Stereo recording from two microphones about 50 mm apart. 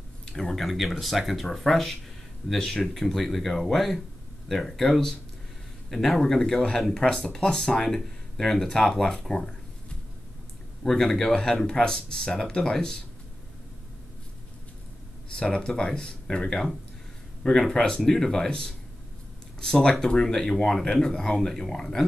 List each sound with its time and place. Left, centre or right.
0.4 s speech: centre
10.8 s speech: centre
15.3 s speech: centre